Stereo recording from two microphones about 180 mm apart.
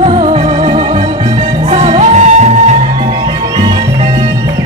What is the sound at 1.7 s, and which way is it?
Music, 35° right (ahead or behind).